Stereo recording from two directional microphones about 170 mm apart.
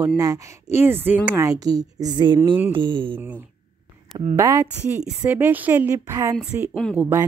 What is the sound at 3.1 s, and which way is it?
A woman's voice, 10° right (ahead or behind).